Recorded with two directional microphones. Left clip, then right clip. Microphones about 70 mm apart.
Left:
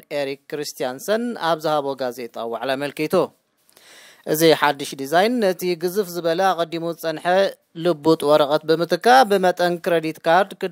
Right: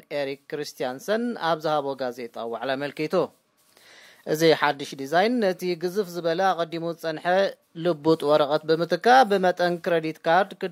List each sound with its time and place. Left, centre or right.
0.1 s speech: left